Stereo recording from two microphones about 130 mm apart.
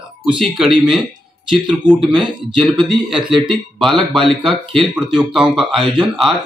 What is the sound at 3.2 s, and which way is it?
Speech, 40° right (ahead or behind).